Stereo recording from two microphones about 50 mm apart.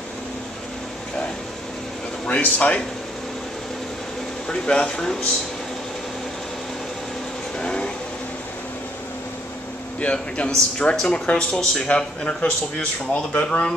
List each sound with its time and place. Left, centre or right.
2.2 s speech: left
4.5 s speech: centre
7.6 s a sound: centre
9.9 s speech: left